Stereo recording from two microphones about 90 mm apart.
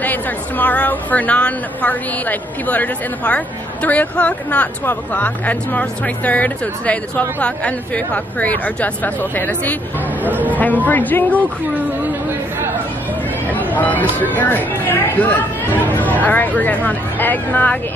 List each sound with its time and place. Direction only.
0.0 s a woman's voice: 20° left (ahead or behind)
10.2 s speech: 20° right (ahead or behind)
10.9 s speech: 20° left (ahead or behind)
13.7 s speech: 20° left (ahead or behind)